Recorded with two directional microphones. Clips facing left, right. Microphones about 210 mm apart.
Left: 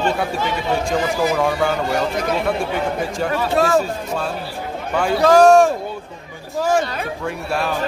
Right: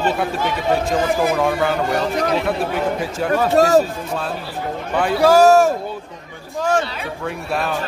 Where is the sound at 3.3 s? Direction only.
45° right (ahead or behind).